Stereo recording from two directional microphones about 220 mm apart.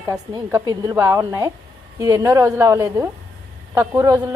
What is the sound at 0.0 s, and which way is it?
A woman's voice, 15° right (ahead or behind).